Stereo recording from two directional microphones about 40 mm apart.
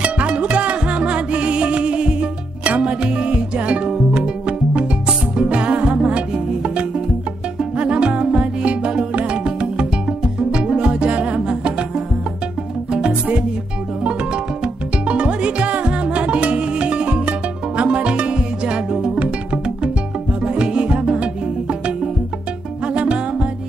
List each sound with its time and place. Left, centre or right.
0.0 s music: right
14.0 s music: right
22.9 s music: right